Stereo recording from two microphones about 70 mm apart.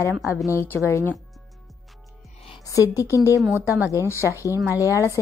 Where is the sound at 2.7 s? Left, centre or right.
Left.